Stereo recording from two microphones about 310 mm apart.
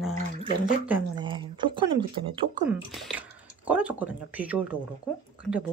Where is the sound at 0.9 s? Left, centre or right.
Centre.